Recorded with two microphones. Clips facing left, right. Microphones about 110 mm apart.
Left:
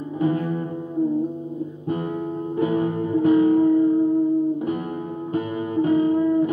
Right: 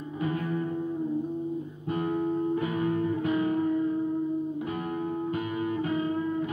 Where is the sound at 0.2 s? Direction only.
30° left (ahead or behind).